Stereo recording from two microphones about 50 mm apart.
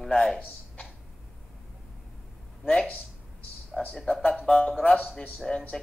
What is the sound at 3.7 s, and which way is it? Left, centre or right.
A man's voice, centre.